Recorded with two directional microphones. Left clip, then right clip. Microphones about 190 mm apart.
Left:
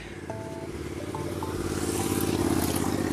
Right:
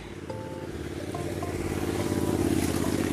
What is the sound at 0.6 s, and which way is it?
Vehicle, 25° left (ahead or behind).